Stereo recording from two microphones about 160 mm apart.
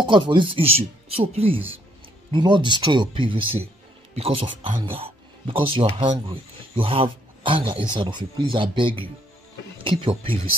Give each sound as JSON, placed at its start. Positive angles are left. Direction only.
{"t": 0.0, "sound": "speech", "side_deg": -30}